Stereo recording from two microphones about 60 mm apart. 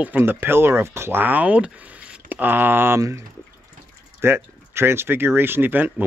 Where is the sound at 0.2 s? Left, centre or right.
Right.